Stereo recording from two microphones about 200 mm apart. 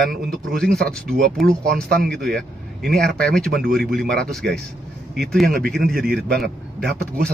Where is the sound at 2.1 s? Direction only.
5° left (ahead or behind).